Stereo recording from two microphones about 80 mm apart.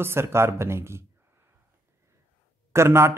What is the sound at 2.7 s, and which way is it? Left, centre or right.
Speech, right.